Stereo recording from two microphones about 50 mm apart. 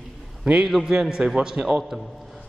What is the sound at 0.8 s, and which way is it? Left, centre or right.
A man's voice, centre.